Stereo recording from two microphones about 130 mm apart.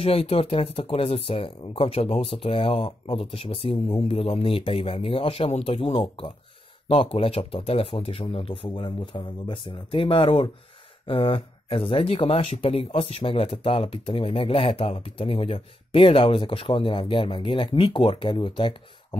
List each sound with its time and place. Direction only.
0.0 s speech: 50° left (ahead or behind)